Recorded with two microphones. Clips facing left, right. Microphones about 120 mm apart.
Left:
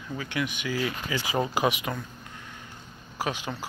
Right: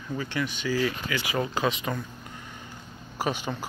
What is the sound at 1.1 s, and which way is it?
Speech, 25° left (ahead or behind).